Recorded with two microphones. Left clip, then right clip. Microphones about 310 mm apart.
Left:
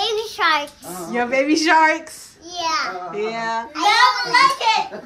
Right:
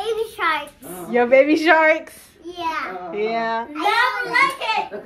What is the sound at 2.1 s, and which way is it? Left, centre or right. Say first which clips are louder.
A child's voice: left 3 dB; left.